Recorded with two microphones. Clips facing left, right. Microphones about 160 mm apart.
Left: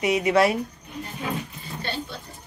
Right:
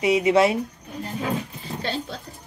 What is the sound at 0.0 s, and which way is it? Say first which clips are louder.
Speech: right 2 dB; 25° right (ahead or behind).